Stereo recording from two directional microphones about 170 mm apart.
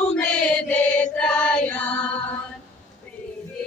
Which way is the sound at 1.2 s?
5° left (ahead or behind).